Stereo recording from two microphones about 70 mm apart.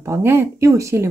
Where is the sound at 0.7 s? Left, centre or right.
Right.